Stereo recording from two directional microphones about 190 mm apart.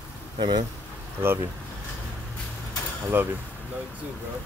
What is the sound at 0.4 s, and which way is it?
Speech, 25° right (ahead or behind).